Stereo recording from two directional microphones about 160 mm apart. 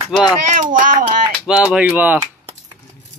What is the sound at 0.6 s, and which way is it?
Speech, 55° right (ahead or behind).